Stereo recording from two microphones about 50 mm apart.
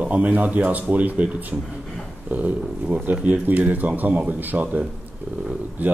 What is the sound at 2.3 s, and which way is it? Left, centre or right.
Speech, right.